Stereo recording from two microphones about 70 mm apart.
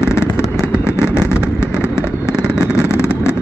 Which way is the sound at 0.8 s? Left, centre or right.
Left.